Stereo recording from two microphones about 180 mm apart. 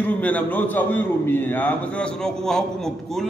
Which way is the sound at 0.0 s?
10° left (ahead or behind).